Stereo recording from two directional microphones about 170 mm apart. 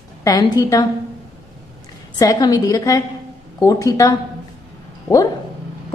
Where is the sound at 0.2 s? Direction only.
25° left (ahead or behind).